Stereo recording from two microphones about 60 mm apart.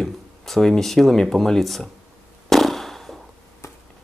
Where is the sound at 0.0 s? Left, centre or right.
Centre.